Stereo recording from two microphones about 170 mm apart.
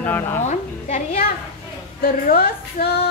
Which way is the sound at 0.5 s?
45° left (ahead or behind).